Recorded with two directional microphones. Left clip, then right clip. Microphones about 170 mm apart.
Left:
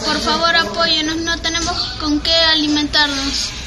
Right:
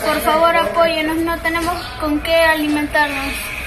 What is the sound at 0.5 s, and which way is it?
A woman's voice, 10° left (ahead or behind).